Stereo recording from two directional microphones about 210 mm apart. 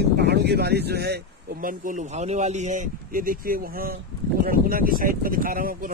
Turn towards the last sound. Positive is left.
turn(degrees=-40)  # may be behind; listen again after turning